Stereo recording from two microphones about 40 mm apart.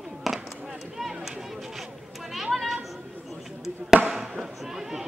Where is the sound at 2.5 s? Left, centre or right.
Centre.